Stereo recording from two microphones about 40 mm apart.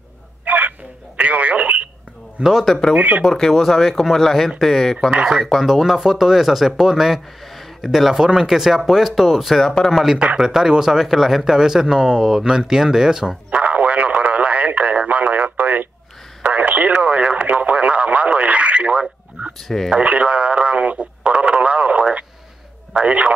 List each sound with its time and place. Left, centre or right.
0.5 s telephone: right
2.4 s speech: right
3.0 s speech: right
3.3 s speech: centre
5.1 s speech: right
5.4 s speech: centre
9.5 s speech: centre
10.4 s speech: centre
13.5 s radio: right
20.0 s speech: right